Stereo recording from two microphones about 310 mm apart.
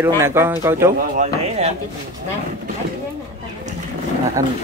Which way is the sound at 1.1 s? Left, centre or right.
Right.